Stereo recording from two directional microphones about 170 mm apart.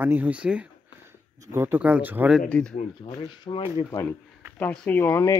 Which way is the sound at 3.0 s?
30° left (ahead or behind).